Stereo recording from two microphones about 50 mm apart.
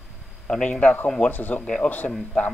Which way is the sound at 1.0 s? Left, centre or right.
Centre.